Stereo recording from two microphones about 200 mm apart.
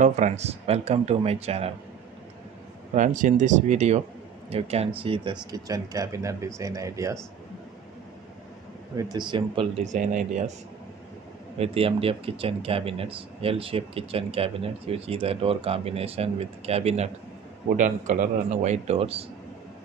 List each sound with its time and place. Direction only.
0.0 s speech: 35° right (ahead or behind)
2.9 s speech: 40° right (ahead or behind); by 7.2 s 15° right (ahead or behind)
8.9 s speech: 20° right (ahead or behind)
9.9 s speech: 40° right (ahead or behind)
11.5 s speech: 30° right (ahead or behind)